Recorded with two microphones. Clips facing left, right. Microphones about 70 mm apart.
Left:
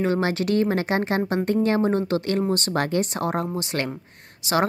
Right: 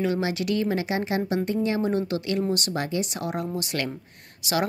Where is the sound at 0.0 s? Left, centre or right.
Left.